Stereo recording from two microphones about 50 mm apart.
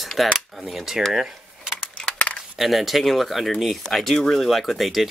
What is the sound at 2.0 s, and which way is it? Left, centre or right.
Coin, left.